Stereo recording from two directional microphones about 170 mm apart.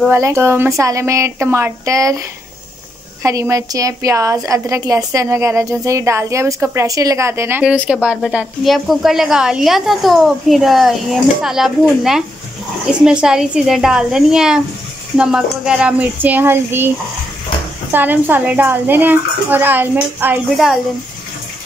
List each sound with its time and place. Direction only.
0.1 s a woman's voice: 15° right (ahead or behind)
17.9 s a woman's voice: 10° right (ahead or behind)